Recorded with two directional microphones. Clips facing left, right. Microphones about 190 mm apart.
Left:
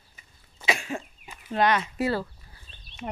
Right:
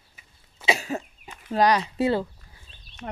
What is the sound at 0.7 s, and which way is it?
Cough, 40° right (ahead or behind).